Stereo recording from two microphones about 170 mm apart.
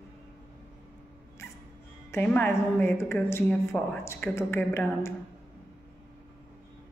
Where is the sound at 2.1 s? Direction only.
10° left (ahead or behind).